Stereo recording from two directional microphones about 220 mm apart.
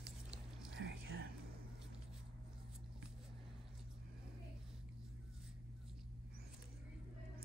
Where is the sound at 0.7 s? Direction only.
55° right (ahead or behind).